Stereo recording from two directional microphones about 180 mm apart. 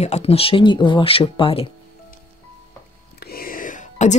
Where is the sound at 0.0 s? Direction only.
35° left (ahead or behind).